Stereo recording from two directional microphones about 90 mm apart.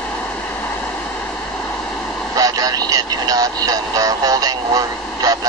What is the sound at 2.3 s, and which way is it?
Speech, 40° right (ahead or behind).